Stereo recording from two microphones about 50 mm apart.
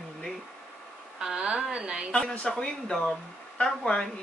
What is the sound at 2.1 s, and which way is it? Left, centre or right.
Speech, left.